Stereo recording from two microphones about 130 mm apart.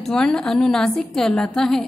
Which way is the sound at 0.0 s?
5° left (ahead or behind).